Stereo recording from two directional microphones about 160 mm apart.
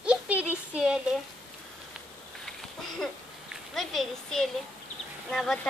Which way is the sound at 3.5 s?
Centre (ahead or behind).